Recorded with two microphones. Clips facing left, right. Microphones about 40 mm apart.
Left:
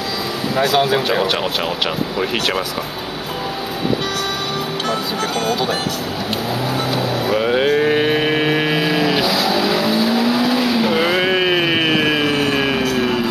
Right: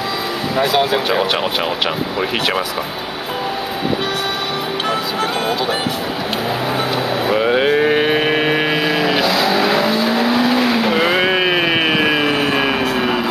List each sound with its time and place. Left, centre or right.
0.6 s speech: centre
7.2 s vehicle: centre
9.6 s vehicle: right
9.8 s vehicle: centre
10.8 s vehicle: centre